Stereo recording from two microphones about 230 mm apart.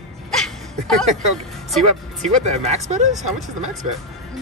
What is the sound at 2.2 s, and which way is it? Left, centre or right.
Speech, right.